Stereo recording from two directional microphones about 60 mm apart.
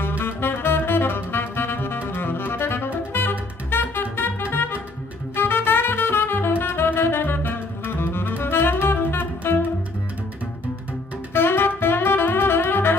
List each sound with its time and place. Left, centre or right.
0.2 s music: left
11.3 s music: left